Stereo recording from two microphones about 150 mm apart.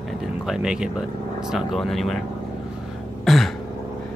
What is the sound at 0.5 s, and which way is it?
Speech, 5° right (ahead or behind).